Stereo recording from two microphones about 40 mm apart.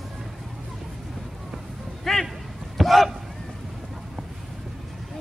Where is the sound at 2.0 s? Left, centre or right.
Centre.